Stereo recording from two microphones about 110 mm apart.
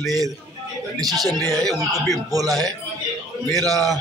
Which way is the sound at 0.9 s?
35° right (ahead or behind).